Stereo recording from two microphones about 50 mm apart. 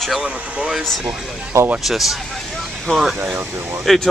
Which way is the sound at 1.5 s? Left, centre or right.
Right.